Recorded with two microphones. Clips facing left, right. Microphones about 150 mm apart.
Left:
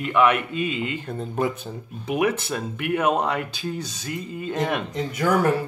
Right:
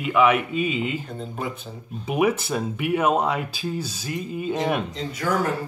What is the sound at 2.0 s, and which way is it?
Speech, 10° right (ahead or behind).